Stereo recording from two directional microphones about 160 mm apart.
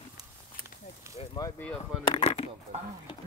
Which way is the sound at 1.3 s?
20° left (ahead or behind).